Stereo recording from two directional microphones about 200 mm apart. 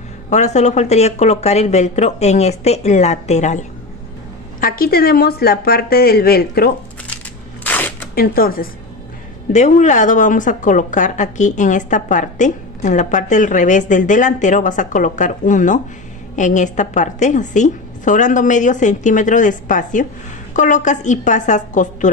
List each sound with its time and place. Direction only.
0.3 s speech: 35° left (ahead or behind)
4.6 s a woman's voice: 45° left (ahead or behind)
7.6 s a sound: 10° left (ahead or behind)
8.1 s a woman's voice: 45° left (ahead or behind)
9.5 s speech: 35° left (ahead or behind)